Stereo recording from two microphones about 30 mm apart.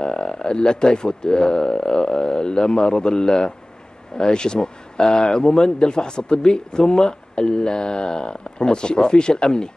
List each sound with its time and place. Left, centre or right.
0.0 s speech: left